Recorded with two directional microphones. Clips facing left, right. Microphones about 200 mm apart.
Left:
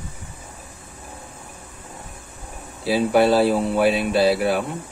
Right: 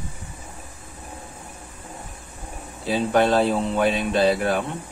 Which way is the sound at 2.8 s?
5° left (ahead or behind).